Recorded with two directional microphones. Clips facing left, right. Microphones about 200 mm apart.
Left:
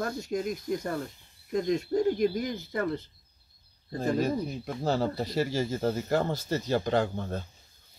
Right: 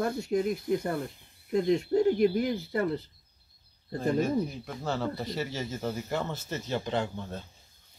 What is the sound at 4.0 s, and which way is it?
Speech, 35° left (ahead or behind).